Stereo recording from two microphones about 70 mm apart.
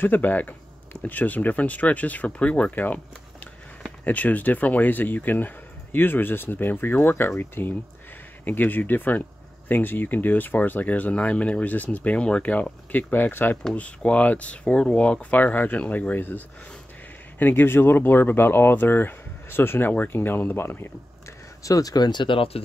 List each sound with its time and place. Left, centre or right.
0.0 s speech: left
13.7 s speech: centre
21.6 s speech: left